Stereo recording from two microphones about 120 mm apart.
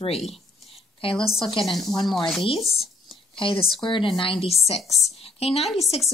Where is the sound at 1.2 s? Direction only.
5° left (ahead or behind).